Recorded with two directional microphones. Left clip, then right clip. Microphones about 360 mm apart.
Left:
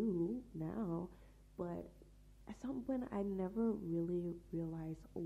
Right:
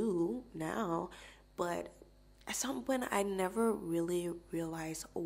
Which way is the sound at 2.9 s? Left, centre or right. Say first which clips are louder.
Right 8 dB; centre.